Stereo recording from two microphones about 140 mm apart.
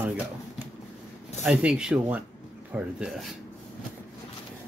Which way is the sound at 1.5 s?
5° right (ahead or behind).